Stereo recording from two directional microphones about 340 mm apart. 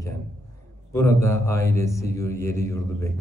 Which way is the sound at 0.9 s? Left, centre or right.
Centre.